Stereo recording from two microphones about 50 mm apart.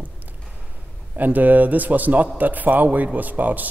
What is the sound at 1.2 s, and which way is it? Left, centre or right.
A man's voice, right.